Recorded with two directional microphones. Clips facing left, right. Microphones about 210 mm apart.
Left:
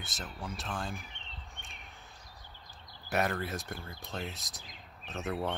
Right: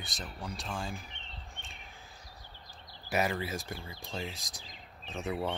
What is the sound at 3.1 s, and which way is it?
Speech, centre (ahead or behind).